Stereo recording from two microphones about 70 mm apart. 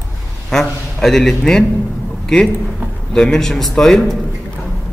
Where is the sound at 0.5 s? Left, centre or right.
Centre.